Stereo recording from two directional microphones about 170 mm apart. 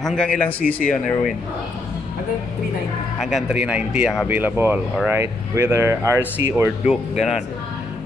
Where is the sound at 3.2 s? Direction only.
5° right (ahead or behind).